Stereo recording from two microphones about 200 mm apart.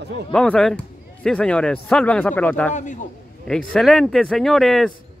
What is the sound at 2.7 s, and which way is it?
Speech, 40° left (ahead or behind).